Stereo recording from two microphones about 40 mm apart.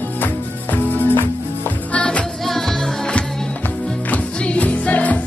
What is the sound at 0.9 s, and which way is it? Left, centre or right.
Music, left.